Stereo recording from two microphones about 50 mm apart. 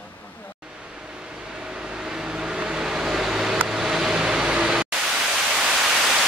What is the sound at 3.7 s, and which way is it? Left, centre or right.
Pink noise, centre.